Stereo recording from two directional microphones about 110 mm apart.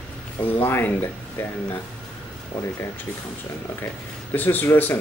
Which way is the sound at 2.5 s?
10° left (ahead or behind).